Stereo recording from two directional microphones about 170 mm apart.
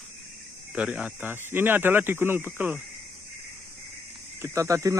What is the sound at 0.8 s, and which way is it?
A man's voice, 5° right (ahead or behind).